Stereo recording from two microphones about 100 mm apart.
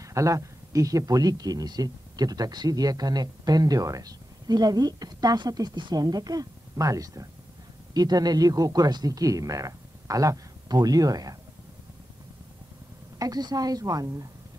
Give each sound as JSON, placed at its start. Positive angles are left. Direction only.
{"t": 0.0, "sound": "speech", "side_deg": -30}
{"t": 13.2, "sound": "speech", "side_deg": -40}